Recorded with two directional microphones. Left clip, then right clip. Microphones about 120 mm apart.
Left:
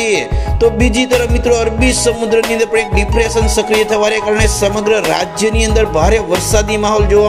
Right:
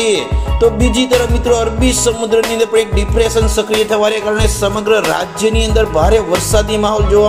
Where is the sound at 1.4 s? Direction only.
55° left (ahead or behind).